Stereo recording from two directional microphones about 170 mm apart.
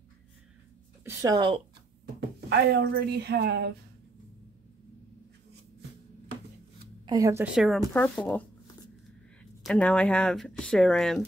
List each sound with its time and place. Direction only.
1.0 s a woman's voice: 20° right (ahead or behind)
2.1 s speech: 75° right (ahead or behind)
7.1 s speech: 20° right (ahead or behind)
7.4 s speech: centre (ahead or behind)
7.9 s speech: 10° left (ahead or behind)
9.7 s speech: 5° left (ahead or behind)